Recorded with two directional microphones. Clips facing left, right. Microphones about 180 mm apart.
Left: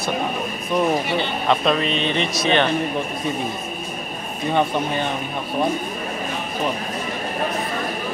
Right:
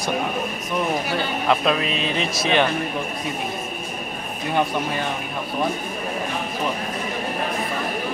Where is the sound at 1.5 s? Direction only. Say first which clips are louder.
Left 1 dB; 5° right (ahead or behind).